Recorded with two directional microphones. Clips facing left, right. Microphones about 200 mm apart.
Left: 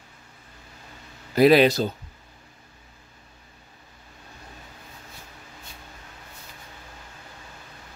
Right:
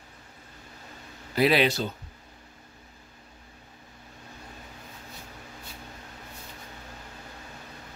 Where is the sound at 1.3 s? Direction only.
45° left (ahead or behind).